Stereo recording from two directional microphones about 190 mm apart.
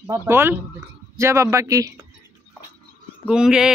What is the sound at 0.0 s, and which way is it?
Speech, 15° right (ahead or behind).